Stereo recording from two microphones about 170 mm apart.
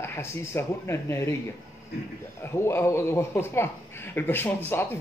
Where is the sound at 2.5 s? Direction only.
15° left (ahead or behind).